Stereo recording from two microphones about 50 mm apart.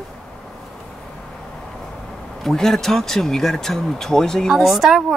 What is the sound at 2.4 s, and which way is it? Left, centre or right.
Speech, centre.